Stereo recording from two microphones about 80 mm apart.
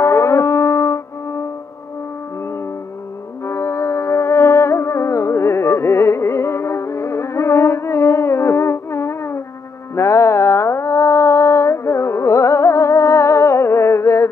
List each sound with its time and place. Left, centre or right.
0.0 s music: left
3.4 s music: left
9.9 s a sound: left